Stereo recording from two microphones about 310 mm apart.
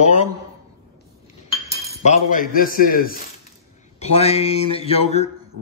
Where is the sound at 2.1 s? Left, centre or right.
Left.